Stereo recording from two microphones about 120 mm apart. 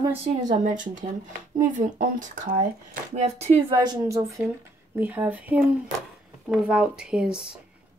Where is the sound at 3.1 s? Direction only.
65° right (ahead or behind).